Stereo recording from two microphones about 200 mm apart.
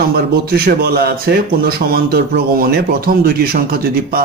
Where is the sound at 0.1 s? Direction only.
50° right (ahead or behind).